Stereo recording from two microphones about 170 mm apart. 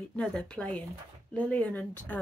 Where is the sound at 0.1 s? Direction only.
5° left (ahead or behind).